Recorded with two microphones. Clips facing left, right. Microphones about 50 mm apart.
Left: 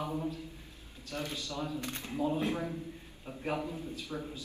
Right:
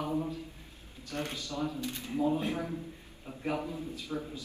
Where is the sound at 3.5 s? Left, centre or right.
Right.